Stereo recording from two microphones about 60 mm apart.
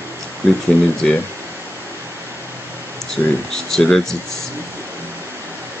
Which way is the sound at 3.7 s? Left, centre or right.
Centre.